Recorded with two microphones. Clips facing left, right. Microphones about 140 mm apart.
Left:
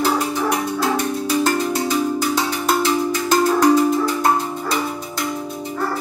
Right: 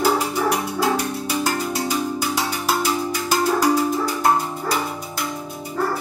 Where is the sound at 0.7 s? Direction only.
10° right (ahead or behind).